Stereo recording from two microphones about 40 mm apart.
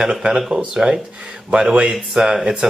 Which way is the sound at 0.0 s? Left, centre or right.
Right.